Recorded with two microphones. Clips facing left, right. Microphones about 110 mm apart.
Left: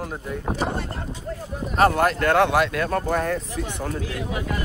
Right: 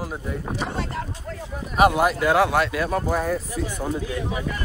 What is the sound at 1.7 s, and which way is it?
Speech, 10° right (ahead or behind).